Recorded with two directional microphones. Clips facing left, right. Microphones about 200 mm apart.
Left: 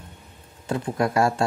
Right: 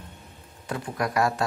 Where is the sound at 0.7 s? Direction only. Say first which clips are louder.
Left 5 dB; 25° left (ahead or behind).